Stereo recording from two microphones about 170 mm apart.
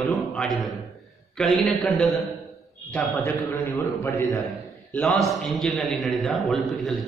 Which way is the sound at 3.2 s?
15° left (ahead or behind).